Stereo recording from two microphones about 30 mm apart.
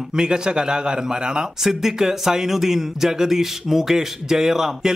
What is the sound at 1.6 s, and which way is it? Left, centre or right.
Speech, centre.